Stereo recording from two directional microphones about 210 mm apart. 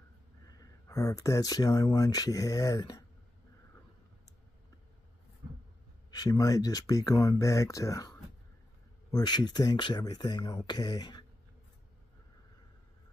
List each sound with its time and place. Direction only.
0.8 s speech: 15° left (ahead or behind)
6.0 s speech: 20° left (ahead or behind)
9.1 s speech: 20° left (ahead or behind)